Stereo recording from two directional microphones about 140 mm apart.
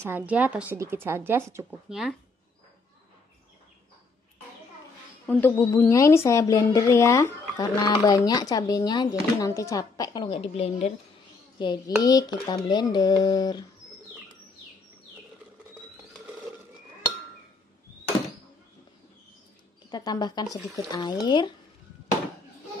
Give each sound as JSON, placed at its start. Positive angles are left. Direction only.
{"t": 0.0, "sound": "speech", "side_deg": -10}
{"t": 1.9, "sound": "speech", "side_deg": -5}
{"t": 5.2, "sound": "a man's voice", "side_deg": 15}
{"t": 11.5, "sound": "speech", "side_deg": 30}
{"t": 19.9, "sound": "speech", "side_deg": 30}